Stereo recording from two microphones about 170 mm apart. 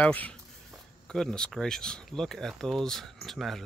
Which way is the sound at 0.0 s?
10° left (ahead or behind).